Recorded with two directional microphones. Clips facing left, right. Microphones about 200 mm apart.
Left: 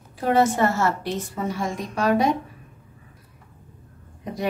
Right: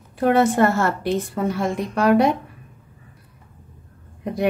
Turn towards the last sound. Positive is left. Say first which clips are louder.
# right 6 dB
turn(degrees=-60)  # may be behind; listen again after turning